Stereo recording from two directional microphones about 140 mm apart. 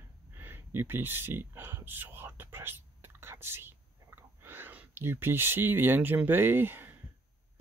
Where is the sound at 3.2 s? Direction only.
15° right (ahead or behind).